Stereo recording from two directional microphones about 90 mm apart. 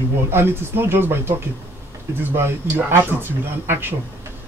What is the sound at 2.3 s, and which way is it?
Speech, 25° right (ahead or behind).